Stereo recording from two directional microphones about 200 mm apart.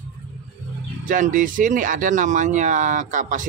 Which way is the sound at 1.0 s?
40° right (ahead or behind).